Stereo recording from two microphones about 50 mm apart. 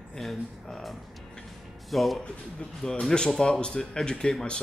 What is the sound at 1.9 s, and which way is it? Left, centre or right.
Speech, centre.